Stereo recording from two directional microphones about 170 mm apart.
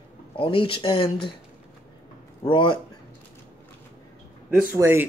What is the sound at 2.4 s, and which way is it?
Speech, 30° left (ahead or behind).